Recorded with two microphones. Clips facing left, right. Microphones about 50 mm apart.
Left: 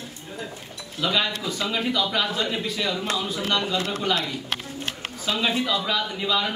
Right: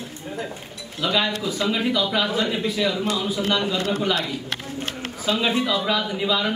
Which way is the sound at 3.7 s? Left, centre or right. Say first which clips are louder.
Right 3 dB; right.